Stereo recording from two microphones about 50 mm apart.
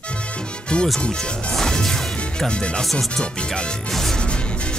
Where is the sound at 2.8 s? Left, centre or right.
Centre.